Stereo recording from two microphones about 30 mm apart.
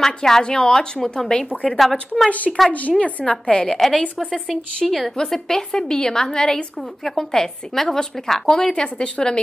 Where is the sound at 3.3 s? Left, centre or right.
Left.